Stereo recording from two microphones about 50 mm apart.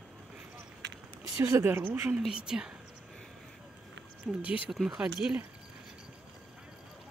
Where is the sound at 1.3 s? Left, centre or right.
Right.